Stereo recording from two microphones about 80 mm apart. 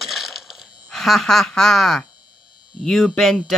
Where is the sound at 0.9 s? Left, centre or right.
Centre.